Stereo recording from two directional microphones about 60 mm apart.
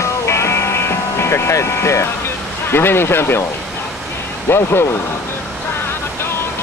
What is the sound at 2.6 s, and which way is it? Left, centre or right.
Speech, left.